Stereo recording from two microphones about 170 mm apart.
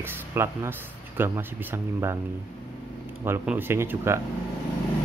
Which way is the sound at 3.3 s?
10° right (ahead or behind).